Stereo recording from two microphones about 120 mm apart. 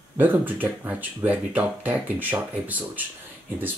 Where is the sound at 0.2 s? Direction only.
15° right (ahead or behind).